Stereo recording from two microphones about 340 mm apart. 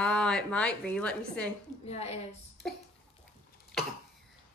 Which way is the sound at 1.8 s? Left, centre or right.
Centre.